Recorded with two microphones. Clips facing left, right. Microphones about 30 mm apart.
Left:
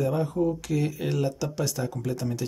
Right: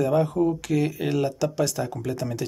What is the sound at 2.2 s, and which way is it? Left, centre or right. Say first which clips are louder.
Speech: right 2 dB; right.